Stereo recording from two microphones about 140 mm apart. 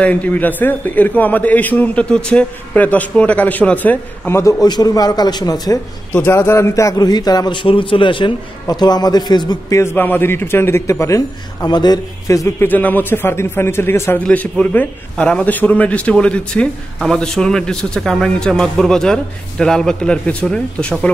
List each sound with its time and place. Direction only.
0.0 s a man's voice: 10° left (ahead or behind)
4.4 s a man's voice: 25° left (ahead or behind)
6.1 s a man's voice: 15° left (ahead or behind)